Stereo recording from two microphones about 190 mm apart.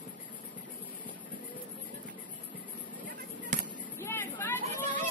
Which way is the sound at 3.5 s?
40° right (ahead or behind).